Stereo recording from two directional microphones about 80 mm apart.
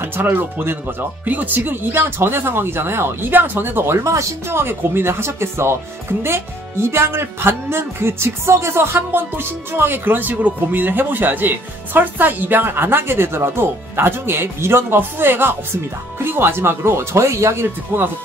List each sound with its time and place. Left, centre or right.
0.0 s speech: right